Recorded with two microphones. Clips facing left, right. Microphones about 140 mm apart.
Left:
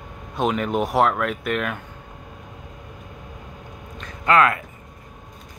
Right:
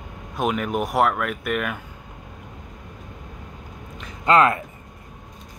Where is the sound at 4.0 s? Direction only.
25° right (ahead or behind).